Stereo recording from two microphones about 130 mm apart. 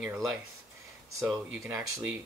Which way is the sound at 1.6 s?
15° right (ahead or behind).